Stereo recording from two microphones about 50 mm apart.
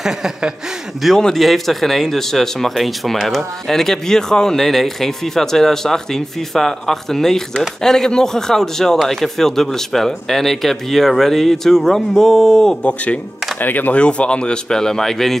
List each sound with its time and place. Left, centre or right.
0.0 s a sound: centre
1.1 s speech: centre
12.8 s speech: left
13.6 s speech: left
13.9 s speech: left